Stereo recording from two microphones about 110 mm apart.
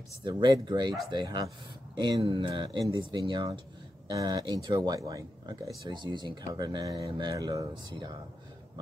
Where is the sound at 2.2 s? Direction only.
55° right (ahead or behind); by 5.5 s 30° right (ahead or behind).